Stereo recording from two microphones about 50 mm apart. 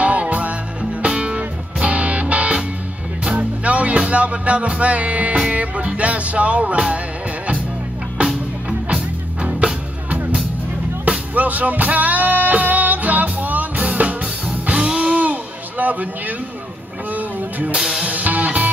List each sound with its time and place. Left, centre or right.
0.0 s music: right
9.4 s music: right
11.1 s music: right
15.8 s speech: right
17.1 s music: right
17.7 s music: centre
18.0 s music: right